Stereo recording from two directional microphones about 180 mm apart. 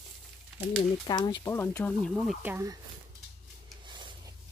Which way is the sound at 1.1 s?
25° left (ahead or behind).